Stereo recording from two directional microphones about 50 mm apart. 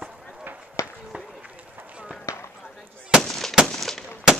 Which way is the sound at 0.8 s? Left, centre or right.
Left.